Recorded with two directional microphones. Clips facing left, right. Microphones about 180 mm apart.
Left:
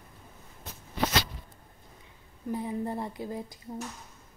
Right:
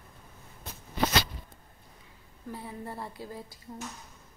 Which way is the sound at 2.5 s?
20° left (ahead or behind).